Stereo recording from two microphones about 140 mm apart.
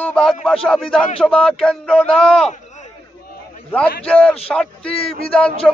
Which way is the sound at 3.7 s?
10° left (ahead or behind).